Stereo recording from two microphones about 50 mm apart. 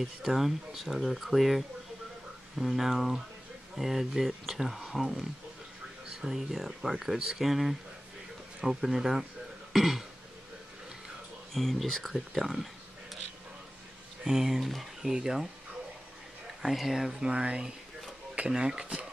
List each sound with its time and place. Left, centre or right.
0.3 s speech: centre
2.6 s speech: centre
6.2 s speech: centre
9.7 s throat clearing: centre
11.5 s speech: centre
14.2 s speech: centre
16.6 s speech: centre
17.3 s speech: right